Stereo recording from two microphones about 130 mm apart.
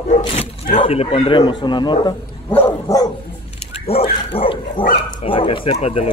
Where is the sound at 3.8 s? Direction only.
45° left (ahead or behind).